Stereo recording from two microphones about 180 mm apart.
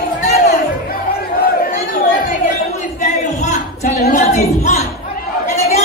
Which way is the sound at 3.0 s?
40° left (ahead or behind).